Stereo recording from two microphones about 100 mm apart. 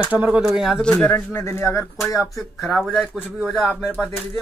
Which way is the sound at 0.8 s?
10° left (ahead or behind).